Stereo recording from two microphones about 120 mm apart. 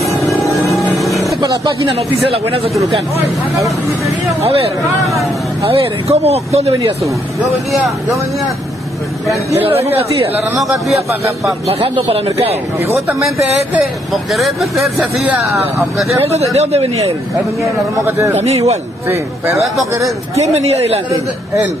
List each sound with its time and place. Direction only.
0.7 s music: centre (ahead or behind)
1.8 s speech: 50° right (ahead or behind)
6.2 s a man's voice: 60° right (ahead or behind)
9.6 s speech: 50° right (ahead or behind)
10.6 s speech: centre (ahead or behind)
11.1 s a man's voice: 25° right (ahead or behind)
11.8 s a man's voice: 55° right (ahead or behind)
14.1 s speech: centre (ahead or behind)
16.5 s a man's voice: 60° right (ahead or behind)
18.0 s a man's voice: 25° right (ahead or behind)
20.5 s a man's voice: 60° right (ahead or behind)